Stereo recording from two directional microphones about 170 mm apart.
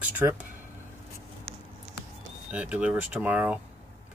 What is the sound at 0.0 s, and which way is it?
Speech, 10° right (ahead or behind).